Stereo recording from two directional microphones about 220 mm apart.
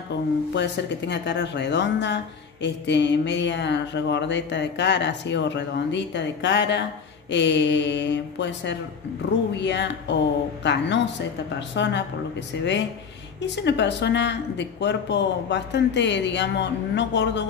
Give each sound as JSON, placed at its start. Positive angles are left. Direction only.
{"t": 0.6, "sound": "speech", "side_deg": 50}